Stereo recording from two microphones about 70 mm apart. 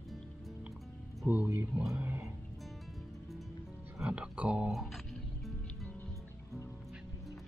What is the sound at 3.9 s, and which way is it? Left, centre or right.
Music, centre.